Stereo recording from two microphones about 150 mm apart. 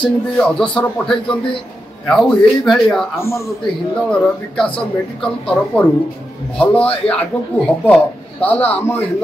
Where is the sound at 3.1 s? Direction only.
20° left (ahead or behind).